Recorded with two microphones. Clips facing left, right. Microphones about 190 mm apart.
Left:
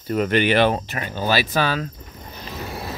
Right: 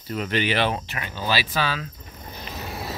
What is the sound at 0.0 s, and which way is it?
Speech, 50° left (ahead or behind).